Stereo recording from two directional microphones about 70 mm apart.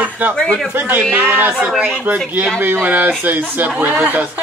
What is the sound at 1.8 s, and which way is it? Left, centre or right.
A woman's voice, right.